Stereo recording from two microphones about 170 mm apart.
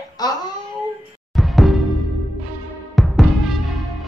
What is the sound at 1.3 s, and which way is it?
Music, centre (ahead or behind).